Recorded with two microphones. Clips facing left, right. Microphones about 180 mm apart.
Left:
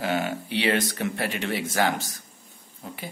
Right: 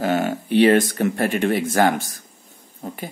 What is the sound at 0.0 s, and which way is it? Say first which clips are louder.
A man's voice: right 6 dB; 45° right (ahead or behind).